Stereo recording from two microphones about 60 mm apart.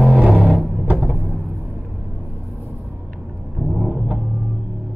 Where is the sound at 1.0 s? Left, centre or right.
Centre.